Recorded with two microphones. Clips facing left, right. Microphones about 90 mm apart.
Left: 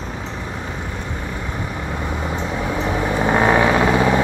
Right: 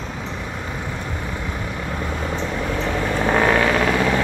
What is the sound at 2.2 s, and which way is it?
Vehicle, 10° left (ahead or behind).